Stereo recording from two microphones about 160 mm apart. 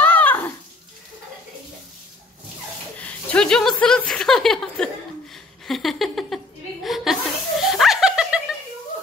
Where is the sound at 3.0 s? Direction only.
10° left (ahead or behind).